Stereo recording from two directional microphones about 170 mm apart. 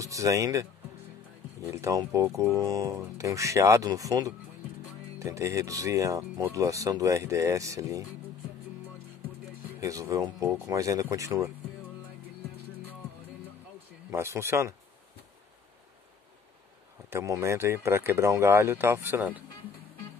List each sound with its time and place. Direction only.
0.0 s speech: 20° right (ahead or behind)
1.7 s speech: 20° right (ahead or behind)
9.8 s speech: 20° right (ahead or behind)
14.1 s speech: 15° right (ahead or behind)
17.1 s speech: 20° right (ahead or behind)